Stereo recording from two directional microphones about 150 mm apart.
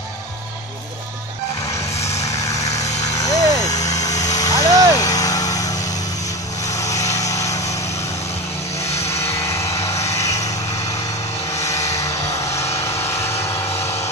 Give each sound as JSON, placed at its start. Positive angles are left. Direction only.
{"t": 2.2, "sound": "vehicle", "side_deg": 20}
{"t": 8.8, "sound": "vehicle", "side_deg": 45}
{"t": 9.2, "sound": "vehicle", "side_deg": 15}
{"t": 11.5, "sound": "vehicle", "side_deg": 20}
{"t": 12.8, "sound": "vehicle", "side_deg": 15}